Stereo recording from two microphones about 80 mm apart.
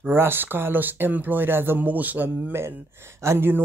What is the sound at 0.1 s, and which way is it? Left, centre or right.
Speech, right.